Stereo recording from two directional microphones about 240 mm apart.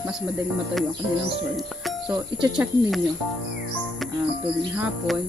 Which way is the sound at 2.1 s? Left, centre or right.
Centre.